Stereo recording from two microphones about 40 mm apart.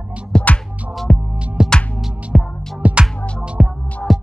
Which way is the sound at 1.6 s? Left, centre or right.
Right.